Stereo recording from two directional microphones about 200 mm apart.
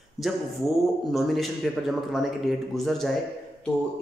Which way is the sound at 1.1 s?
Centre (ahead or behind).